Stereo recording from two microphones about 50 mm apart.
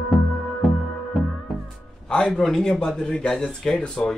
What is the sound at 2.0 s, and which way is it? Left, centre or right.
A man's voice, centre.